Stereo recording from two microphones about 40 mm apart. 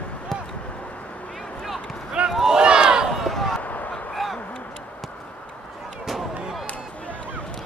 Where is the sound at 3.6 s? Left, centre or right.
Left.